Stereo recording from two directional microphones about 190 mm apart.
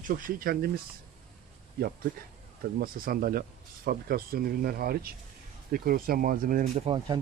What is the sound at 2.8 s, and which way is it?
Speech, 50° right (ahead or behind).